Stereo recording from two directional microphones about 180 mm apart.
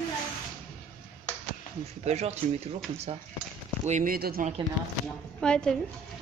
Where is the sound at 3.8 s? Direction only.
45° right (ahead or behind).